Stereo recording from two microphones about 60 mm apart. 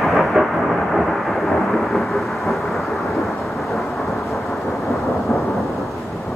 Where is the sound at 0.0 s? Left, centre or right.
Centre.